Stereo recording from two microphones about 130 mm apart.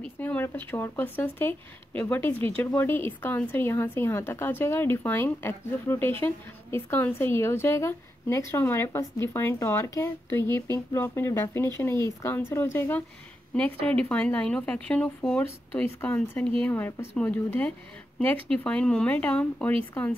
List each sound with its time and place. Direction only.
0.2 s a woman's voice: 15° left (ahead or behind)
13.8 s speech: 10° left (ahead or behind)